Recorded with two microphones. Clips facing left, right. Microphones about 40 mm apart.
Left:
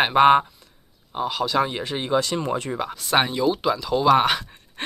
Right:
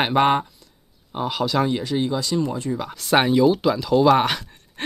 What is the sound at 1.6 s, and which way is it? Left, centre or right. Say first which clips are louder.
Speech: right 3 dB; left.